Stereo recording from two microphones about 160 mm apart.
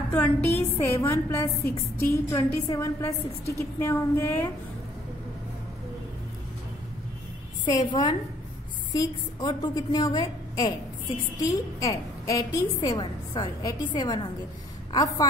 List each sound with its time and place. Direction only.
0.6 s a woman's voice: 15° left (ahead or behind)
7.6 s a woman's voice: 30° left (ahead or behind)